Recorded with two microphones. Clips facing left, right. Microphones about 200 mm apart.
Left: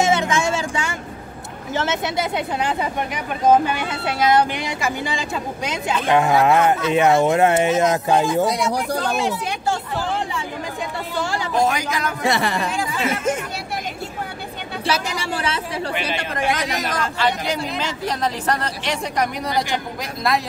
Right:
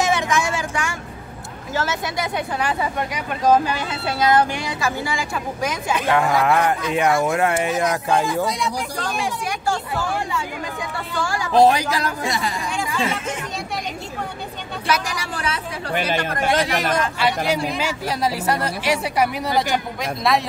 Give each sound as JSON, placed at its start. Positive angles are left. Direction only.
{"t": 0.0, "sound": "vehicle", "side_deg": 25}
{"t": 1.7, "sound": "speech", "side_deg": 20}
{"t": 11.5, "sound": "speech", "side_deg": -35}
{"t": 12.3, "sound": "speech", "side_deg": 65}
{"t": 14.9, "sound": "speech", "side_deg": 25}
{"t": 15.9, "sound": "speech", "side_deg": -50}
{"t": 16.5, "sound": "speech", "side_deg": -30}
{"t": 17.5, "sound": "speech", "side_deg": -10}